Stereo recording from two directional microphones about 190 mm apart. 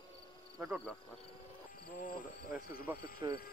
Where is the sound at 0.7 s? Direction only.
5° left (ahead or behind).